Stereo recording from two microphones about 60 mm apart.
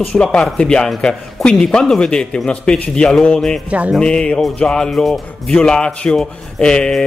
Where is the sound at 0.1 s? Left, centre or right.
Centre.